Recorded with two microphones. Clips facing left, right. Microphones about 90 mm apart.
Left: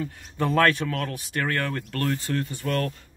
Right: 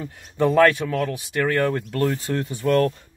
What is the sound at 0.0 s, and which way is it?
Speech, 20° right (ahead or behind).